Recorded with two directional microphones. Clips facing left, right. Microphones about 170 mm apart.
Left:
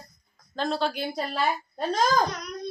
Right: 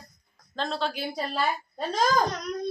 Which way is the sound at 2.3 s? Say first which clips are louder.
Right 3 dB; 45° right (ahead or behind).